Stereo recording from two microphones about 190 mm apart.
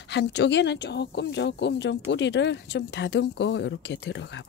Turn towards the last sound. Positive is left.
turn(degrees=70)  # may be behind; listen again after turning